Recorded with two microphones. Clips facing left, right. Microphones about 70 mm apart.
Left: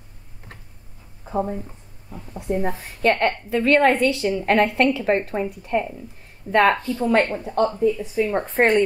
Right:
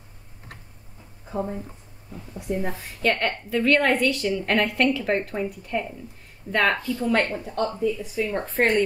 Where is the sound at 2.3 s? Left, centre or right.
Left.